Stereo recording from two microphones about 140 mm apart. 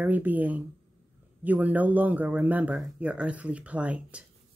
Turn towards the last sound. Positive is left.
turn(degrees=-10)  # may be behind; listen again after turning